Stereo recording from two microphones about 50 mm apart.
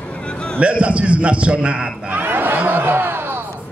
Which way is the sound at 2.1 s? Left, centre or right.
Right.